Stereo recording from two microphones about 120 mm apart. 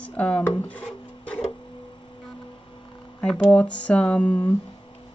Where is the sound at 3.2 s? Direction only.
10° left (ahead or behind).